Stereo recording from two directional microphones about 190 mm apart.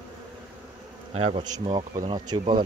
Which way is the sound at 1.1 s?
30° right (ahead or behind).